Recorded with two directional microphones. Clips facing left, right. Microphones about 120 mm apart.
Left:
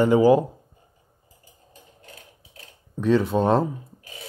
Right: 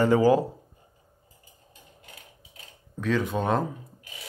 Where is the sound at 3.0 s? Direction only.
20° left (ahead or behind).